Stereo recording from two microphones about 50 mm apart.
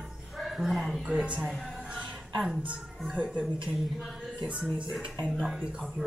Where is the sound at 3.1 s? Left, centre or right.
Right.